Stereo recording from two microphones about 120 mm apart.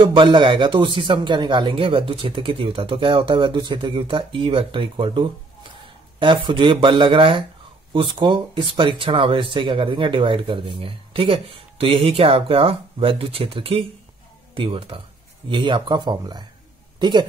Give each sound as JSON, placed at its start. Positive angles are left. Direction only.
{"t": 0.0, "sound": "speech", "side_deg": -45}